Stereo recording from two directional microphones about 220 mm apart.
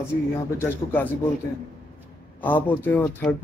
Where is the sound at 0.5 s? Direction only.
10° left (ahead or behind).